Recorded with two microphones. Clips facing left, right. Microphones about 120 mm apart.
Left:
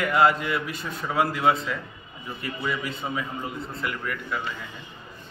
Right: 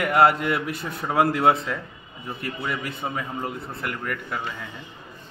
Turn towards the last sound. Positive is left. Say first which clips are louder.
# right 1 dB
turn(degrees=-50)  # may be behind; listen again after turning